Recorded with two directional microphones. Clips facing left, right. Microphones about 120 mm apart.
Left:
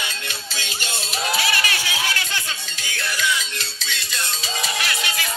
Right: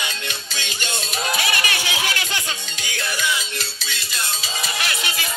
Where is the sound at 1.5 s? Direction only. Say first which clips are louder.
Even; 20° right (ahead or behind).